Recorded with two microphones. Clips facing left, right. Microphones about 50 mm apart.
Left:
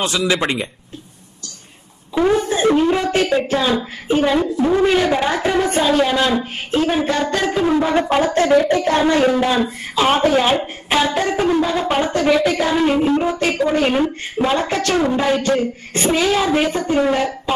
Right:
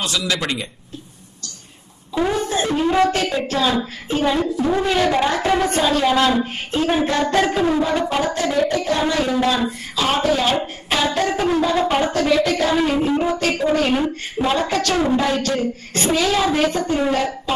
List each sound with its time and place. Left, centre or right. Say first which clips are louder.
0.0 s a woman's voice: left 4 dB; left
2.1 s a woman's voice: left 4 dB; centre
7.8 s a woman's voice: left 3 dB; left
10.6 s a woman's voice: left 3 dB; centre